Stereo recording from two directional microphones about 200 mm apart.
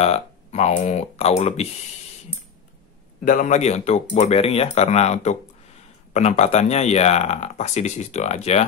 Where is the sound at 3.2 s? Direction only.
40° left (ahead or behind).